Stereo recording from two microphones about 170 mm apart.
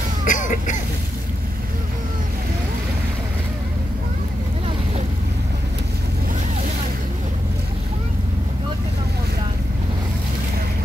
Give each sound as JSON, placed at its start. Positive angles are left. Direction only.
{"t": 0.3, "sound": "cough", "side_deg": 50}